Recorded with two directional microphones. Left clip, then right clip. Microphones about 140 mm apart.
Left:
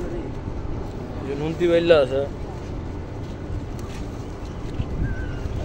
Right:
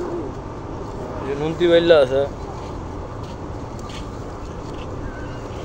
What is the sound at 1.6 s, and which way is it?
Speech, 25° right (ahead or behind).